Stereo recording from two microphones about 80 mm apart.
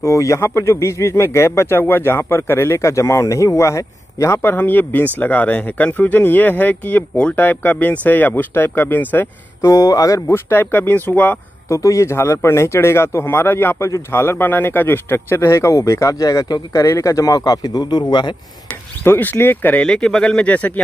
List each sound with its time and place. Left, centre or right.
0.0 s speech: left
11.7 s speech: left
17.4 s a man's voice: left
19.0 s speech: left
19.9 s speech: centre